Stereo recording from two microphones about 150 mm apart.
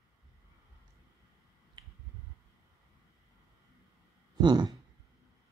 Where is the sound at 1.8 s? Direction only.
30° right (ahead or behind).